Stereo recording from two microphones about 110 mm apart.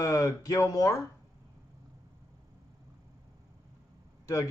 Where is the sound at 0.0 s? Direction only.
30° left (ahead or behind).